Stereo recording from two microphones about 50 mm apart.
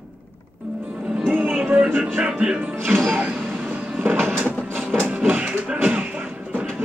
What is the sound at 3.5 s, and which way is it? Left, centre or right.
Vehicle, right.